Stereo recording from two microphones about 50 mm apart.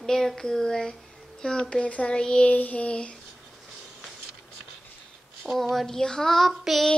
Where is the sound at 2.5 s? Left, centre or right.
Left.